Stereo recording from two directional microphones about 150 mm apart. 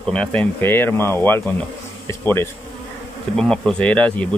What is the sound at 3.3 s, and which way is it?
Speech, 5° left (ahead or behind).